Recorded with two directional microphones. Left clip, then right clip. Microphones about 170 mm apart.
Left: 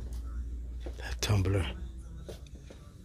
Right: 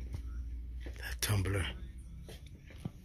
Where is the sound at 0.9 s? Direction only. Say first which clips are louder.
Left 3 dB; 20° left (ahead or behind).